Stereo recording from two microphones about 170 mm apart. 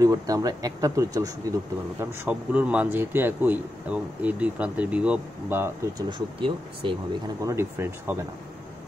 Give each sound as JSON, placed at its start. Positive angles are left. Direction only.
{"t": 0.0, "sound": "speech", "side_deg": -20}
{"t": 2.0, "sound": "speech", "side_deg": -10}
{"t": 7.4, "sound": "speech", "side_deg": -15}